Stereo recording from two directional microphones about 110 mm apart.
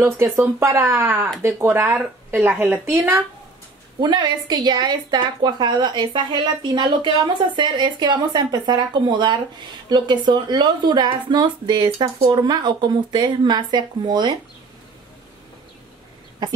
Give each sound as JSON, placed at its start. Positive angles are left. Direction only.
{"t": 0.0, "sound": "speech", "side_deg": -25}
{"t": 4.0, "sound": "speech", "side_deg": -40}